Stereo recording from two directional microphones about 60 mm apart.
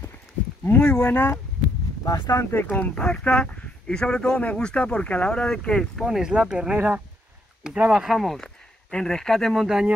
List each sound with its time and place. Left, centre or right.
0.7 s speech: left
2.0 s speech: left
2.7 s speech: left
6.0 s speech: centre; by 8.0 s right
8.0 s speech: centre